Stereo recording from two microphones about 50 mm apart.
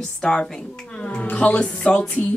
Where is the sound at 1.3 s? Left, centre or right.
Left.